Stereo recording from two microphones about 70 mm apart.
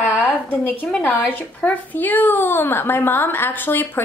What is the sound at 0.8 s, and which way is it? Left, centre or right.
Speech, centre.